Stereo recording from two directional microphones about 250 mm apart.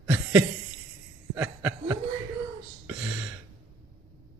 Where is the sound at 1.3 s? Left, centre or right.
Centre.